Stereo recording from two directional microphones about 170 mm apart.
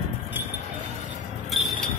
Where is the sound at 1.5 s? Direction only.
Centre (ahead or behind).